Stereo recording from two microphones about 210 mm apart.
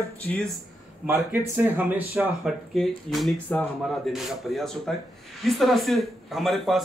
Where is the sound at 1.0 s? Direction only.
10° right (ahead or behind).